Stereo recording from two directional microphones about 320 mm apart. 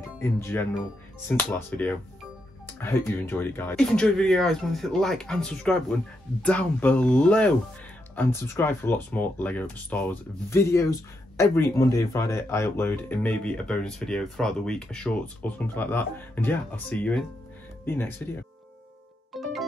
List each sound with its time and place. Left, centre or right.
0.2 s speech: centre
3.3 s speech: centre
19.3 s music: centre